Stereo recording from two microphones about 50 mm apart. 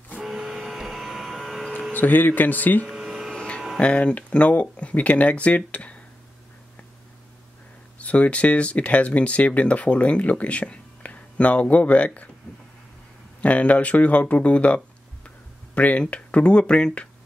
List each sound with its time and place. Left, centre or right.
0.2 s vehicle: centre
1.9 s speech: left
2.9 s a sound: centre
3.3 s a sound: centre
3.8 s speech: left
8.0 s speech: left
13.4 s speech: left